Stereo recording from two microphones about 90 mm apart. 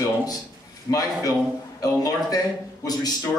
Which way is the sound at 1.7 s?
40° left (ahead or behind).